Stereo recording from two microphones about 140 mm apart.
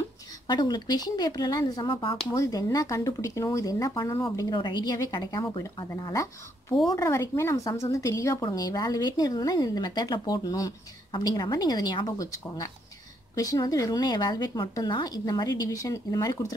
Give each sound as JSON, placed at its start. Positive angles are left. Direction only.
{"t": 0.5, "sound": "a woman's voice", "side_deg": 30}
{"t": 2.3, "sound": "a woman's voice", "side_deg": 25}
{"t": 4.6, "sound": "a woman's voice", "side_deg": 35}